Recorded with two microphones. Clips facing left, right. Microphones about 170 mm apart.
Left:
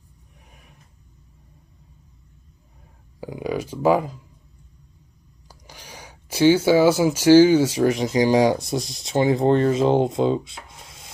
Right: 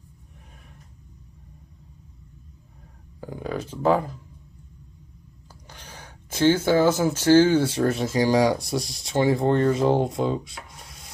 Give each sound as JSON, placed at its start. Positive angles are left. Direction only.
{"t": 3.2, "sound": "speech", "side_deg": 10}
{"t": 5.7, "sound": "speech", "side_deg": 10}